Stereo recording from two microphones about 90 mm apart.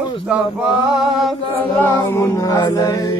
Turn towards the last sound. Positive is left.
turn(degrees=40)  # may be behind; listen again after turning